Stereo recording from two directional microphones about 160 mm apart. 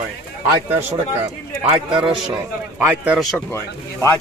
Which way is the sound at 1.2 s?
30° right (ahead or behind).